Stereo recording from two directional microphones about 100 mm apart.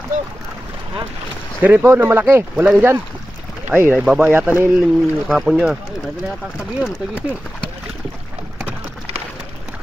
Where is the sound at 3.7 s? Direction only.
20° right (ahead or behind).